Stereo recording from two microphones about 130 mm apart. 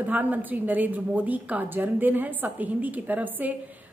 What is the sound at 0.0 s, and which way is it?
A woman's voice, 15° right (ahead or behind).